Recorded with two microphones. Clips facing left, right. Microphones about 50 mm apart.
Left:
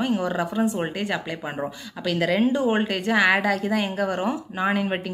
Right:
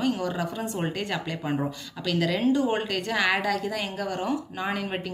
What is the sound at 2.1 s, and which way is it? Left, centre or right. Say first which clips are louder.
Speech: left 2 dB; centre.